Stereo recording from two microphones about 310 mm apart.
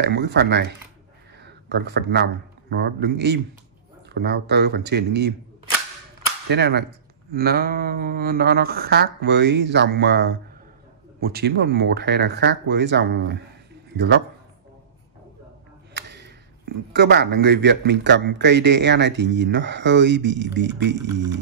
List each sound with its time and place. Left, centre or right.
0.0 s speech: right
1.4 s a sound: right
2.7 s speech: right
6.5 s speech: right
15.9 s speech: right